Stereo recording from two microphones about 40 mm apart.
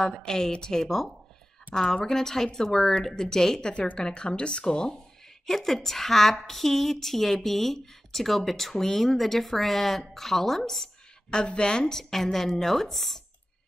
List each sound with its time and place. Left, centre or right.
0.0 s a woman's voice: centre
3.7 s a woman's voice: left
4.0 s speech: left
5.5 s a woman's voice: centre
11.2 s speech: left
11.8 s a woman's voice: centre